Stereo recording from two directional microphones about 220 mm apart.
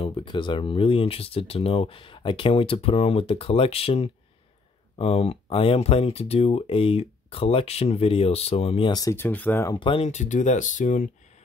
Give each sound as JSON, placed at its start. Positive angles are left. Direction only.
{"t": 0.0, "sound": "speech", "side_deg": 20}
{"t": 9.8, "sound": "speech", "side_deg": 25}